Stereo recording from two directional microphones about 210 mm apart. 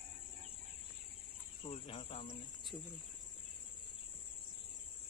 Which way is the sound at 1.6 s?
30° left (ahead or behind).